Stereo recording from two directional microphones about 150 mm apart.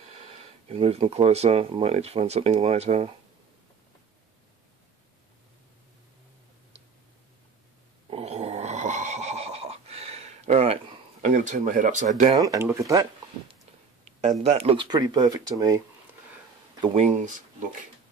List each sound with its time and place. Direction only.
0.7 s speech: 40° right (ahead or behind)
8.1 s a sound: 45° right (ahead or behind)
11.2 s speech: 55° right (ahead or behind)
12.3 s speech: 25° right (ahead or behind)
14.4 s speech: 45° right (ahead or behind)
14.9 s speech: 25° right (ahead or behind)
16.9 s speech: 50° right (ahead or behind)